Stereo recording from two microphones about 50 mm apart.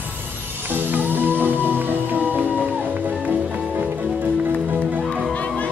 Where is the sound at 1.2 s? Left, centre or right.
Right.